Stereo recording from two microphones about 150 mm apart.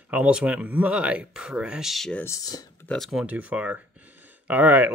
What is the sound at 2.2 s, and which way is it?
Speech, 20° left (ahead or behind).